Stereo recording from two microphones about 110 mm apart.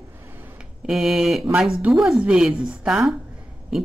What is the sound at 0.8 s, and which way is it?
Speech, centre (ahead or behind).